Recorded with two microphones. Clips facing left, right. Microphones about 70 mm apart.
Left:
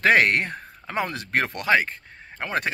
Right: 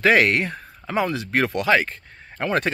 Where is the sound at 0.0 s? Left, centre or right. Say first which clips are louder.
Right 1 dB; left.